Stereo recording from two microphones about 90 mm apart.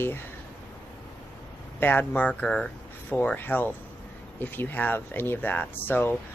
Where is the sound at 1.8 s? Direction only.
20° left (ahead or behind).